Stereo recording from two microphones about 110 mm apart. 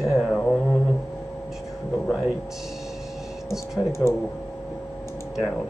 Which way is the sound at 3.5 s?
25° left (ahead or behind).